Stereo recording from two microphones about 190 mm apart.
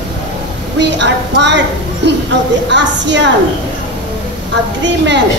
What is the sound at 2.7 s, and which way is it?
Speech, 70° right (ahead or behind).